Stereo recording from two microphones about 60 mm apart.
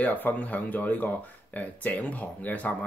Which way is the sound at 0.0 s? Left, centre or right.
Left.